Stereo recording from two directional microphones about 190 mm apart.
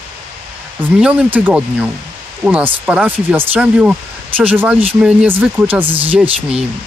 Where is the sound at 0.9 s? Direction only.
5° right (ahead or behind).